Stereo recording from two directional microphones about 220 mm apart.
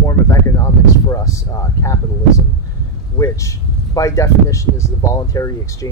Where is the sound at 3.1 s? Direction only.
15° left (ahead or behind).